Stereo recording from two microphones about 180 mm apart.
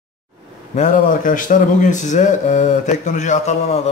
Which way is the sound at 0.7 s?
45° left (ahead or behind).